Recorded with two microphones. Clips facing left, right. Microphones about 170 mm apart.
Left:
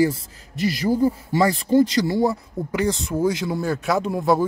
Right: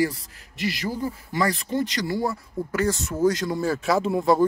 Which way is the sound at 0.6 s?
40° left (ahead or behind).